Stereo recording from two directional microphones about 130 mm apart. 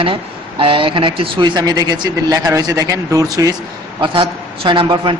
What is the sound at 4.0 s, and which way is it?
A man's voice, 40° right (ahead or behind).